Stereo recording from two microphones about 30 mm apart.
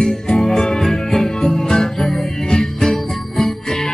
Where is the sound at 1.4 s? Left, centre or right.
Left.